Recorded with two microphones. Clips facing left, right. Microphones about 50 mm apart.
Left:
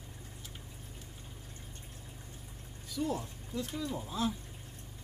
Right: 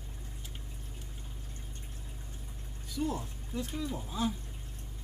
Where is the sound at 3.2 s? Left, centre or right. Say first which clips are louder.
Even; right.